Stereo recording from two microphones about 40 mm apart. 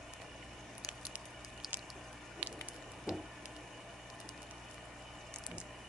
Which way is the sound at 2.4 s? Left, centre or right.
Right.